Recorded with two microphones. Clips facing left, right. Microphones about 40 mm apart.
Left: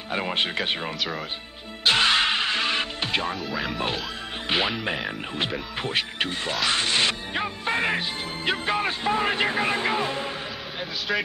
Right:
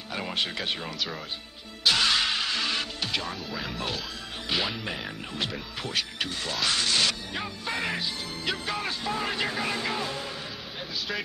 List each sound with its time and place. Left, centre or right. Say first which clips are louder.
0.1 s speech: left 5 dB; left
1.9 s music: left 4 dB; left
3.4 s speech: left 6 dB; centre
3.7 s speech: left 5 dB; left